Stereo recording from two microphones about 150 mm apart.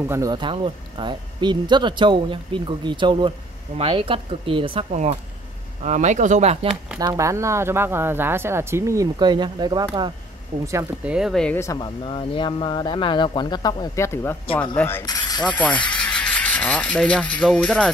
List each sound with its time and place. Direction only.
0.0 s speech: 15° right (ahead or behind)
0.3 s speech: 35° right (ahead or behind)
5.8 s speech: 50° right (ahead or behind)
7.0 s speech: 20° right (ahead or behind)
11.1 s speech: 5° right (ahead or behind)
11.4 s speech: 15° left (ahead or behind)
11.8 s speech: 35° left (ahead or behind); by 15.0 s 15° left (ahead or behind)
15.0 s mechanisms: 25° left (ahead or behind)
15.4 s speech: 10° left (ahead or behind)